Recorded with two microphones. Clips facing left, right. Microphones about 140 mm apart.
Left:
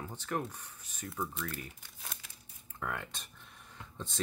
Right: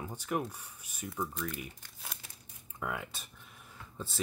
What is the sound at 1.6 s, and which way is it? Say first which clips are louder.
Crumpling: right 2 dB; 5° right (ahead or behind).